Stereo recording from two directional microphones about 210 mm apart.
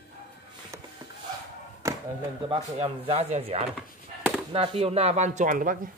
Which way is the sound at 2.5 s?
30° right (ahead or behind).